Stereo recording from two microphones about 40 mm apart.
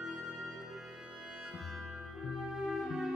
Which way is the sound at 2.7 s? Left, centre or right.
Centre.